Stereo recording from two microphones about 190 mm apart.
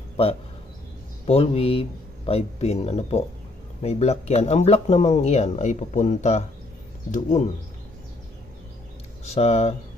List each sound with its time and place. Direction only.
1.2 s speech: 35° left (ahead or behind)
9.2 s speech: 35° left (ahead or behind)